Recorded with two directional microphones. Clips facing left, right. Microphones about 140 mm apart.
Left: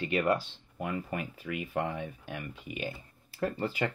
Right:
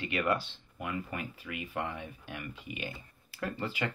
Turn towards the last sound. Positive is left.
turn(degrees=40)  # may be behind; listen again after turning